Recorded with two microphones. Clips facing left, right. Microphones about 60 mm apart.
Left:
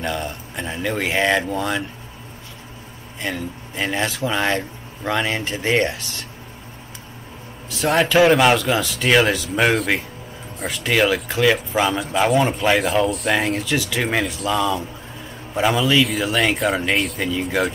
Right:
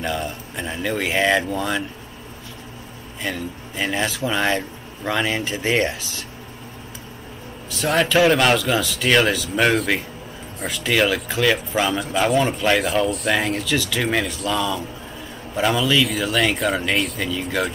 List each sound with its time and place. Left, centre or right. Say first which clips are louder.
0.0 s speech: even; centre
3.2 s speech: left 1 dB; centre
7.8 s speech: left 2 dB; centre
17.2 s speech: left 2 dB; centre